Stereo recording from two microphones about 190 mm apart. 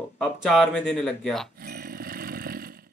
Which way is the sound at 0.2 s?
5° left (ahead or behind).